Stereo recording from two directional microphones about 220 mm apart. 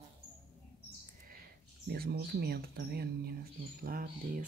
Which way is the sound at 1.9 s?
45° right (ahead or behind).